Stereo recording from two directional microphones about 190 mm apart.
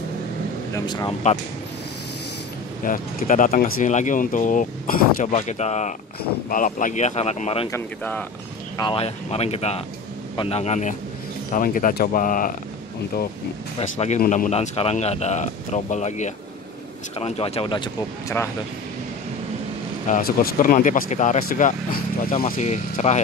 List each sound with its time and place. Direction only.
0.7 s speech: 20° left (ahead or behind)
2.8 s a man's voice: 45° left (ahead or behind)
7.7 s speech: 10° left (ahead or behind)
8.7 s a man's voice: 25° left (ahead or behind); by 12.5 s 45° left (ahead or behind)
13.7 s a man's voice: 35° left (ahead or behind)
20.1 s a man's voice: 50° left (ahead or behind)